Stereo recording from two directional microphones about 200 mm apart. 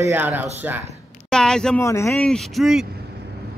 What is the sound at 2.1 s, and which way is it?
Speech, 5° left (ahead or behind).